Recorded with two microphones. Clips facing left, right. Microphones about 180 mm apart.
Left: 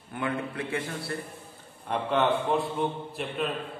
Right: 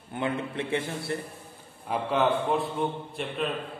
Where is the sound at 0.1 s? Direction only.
25° right (ahead or behind).